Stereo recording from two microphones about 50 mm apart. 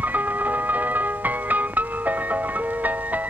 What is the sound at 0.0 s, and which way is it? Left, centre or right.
Music, right.